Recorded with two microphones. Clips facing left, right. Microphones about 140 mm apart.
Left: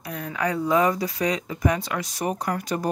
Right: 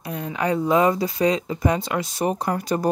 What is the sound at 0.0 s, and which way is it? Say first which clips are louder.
Speech: right 2 dB; 25° right (ahead or behind).